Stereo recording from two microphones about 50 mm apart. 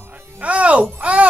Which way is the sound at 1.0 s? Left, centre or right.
Right.